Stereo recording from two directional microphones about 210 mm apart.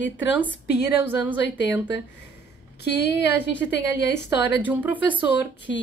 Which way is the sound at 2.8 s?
50° left (ahead or behind).